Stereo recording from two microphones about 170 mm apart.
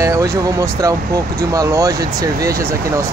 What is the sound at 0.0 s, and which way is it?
Speech, 20° right (ahead or behind).